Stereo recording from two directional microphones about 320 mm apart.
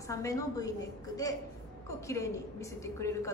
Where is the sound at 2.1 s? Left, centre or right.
Centre.